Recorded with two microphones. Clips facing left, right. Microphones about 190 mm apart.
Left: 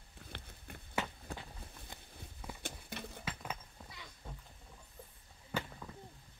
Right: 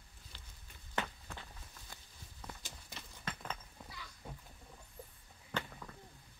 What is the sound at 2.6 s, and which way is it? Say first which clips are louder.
Horse: left 8 dB; 60° left (ahead or behind).